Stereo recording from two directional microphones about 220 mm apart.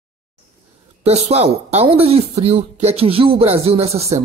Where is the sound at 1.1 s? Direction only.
30° right (ahead or behind).